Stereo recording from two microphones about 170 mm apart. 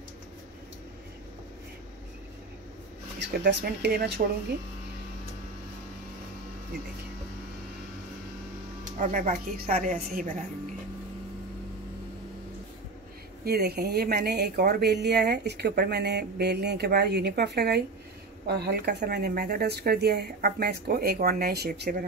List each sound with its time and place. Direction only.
3.2 s speech: 85° right
8.9 s speech: 50° right (ahead or behind)
13.4 s speech: 65° right (ahead or behind)
15.7 s speech: 70° right (ahead or behind)